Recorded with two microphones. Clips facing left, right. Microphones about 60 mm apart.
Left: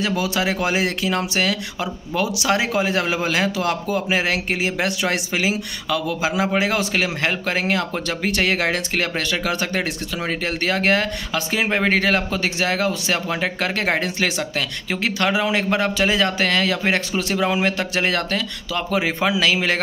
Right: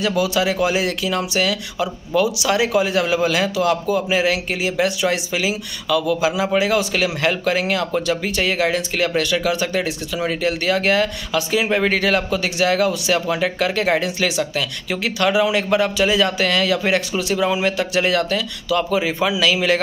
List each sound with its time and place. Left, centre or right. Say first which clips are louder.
0.0 s speech: right 3 dB; left
8.3 s speech: left 2 dB; left